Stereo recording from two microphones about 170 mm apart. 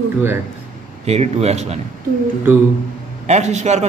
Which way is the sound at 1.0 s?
40° right (ahead or behind).